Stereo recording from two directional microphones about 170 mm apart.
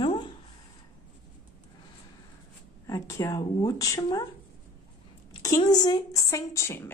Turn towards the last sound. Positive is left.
turn(degrees=15)  # may be behind; listen again after turning